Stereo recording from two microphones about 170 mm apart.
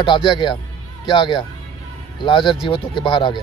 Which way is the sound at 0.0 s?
30° left (ahead or behind).